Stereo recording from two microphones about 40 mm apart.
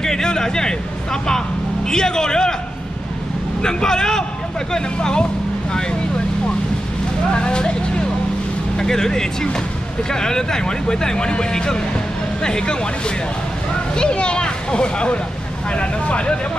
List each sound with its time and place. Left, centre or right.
0.0 s speech: centre
1.9 s speech: centre
3.6 s speech: centre
7.3 s speech: left
8.7 s speech: centre
13.9 s speech: left